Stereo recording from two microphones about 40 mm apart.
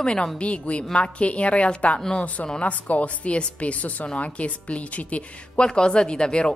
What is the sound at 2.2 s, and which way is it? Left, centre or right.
A woman's voice, left.